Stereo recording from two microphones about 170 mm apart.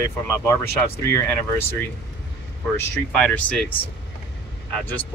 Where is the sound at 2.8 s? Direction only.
5° left (ahead or behind).